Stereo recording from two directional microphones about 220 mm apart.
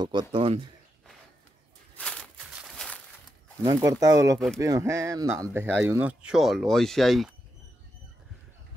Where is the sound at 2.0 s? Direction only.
5° left (ahead or behind).